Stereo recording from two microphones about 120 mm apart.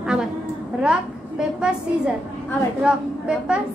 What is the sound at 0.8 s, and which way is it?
A woman's voice, 5° right (ahead or behind).